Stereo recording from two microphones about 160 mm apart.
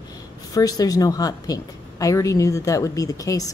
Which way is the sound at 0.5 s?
25° left (ahead or behind).